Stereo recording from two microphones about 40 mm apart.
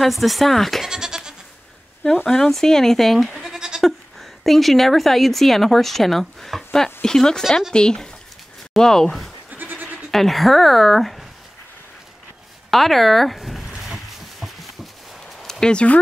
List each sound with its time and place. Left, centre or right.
0.0 s speech: centre
0.8 s goat: centre
2.2 s speech: centre
3.3 s goat: centre
3.8 s a woman's voice: centre
9.5 s goat: right
10.1 s speech: centre
12.7 s a sound: centre
15.6 s speech: left